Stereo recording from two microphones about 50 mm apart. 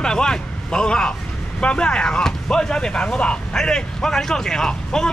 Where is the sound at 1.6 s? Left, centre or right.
Left.